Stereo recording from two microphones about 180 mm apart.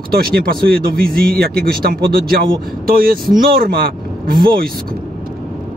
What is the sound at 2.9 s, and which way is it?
Speech, 55° right (ahead or behind).